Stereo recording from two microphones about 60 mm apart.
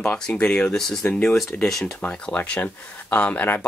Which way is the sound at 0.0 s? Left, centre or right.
Left.